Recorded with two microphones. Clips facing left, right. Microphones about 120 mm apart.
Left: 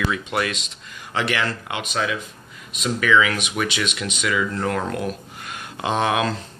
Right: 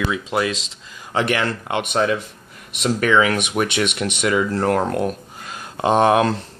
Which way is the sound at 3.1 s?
35° right (ahead or behind).